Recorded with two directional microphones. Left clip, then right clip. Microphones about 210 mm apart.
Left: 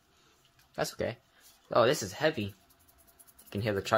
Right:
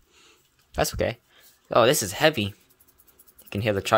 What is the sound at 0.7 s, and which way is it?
Speech, 35° right (ahead or behind).